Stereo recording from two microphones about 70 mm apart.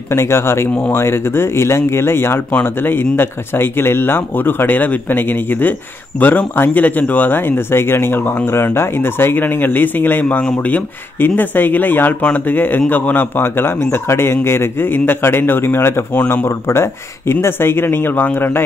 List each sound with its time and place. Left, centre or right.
0.1 s a man's voice: left